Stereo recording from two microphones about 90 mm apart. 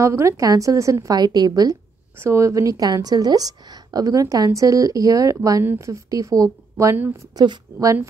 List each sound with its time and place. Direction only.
0.0 s a woman's voice: 35° right (ahead or behind)
2.1 s a woman's voice: 30° right (ahead or behind); by 7.5 s 45° right (ahead or behind)
7.8 s a woman's voice: 35° right (ahead or behind)